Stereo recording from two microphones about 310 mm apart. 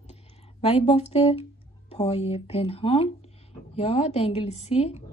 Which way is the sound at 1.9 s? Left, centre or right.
Centre.